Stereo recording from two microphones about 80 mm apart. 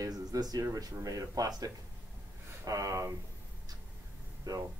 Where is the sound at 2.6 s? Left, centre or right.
Right.